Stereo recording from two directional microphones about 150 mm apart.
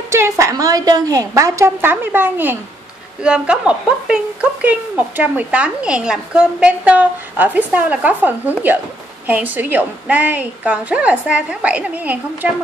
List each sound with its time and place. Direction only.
0.1 s a woman's voice: 20° right (ahead or behind)